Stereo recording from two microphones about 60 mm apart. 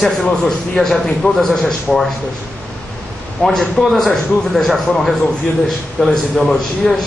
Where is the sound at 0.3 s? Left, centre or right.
Centre.